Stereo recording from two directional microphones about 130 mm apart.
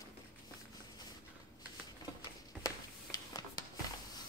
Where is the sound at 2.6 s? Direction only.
30° left (ahead or behind).